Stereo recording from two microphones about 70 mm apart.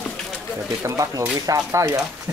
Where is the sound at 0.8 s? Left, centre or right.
Right.